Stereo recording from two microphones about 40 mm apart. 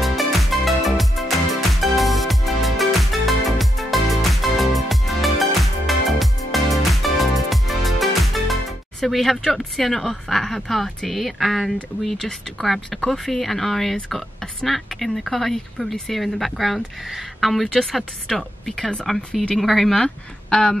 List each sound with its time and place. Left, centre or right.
0.0 s music: centre
10.2 s speech: centre
17.9 s speech: centre
20.0 s speech: left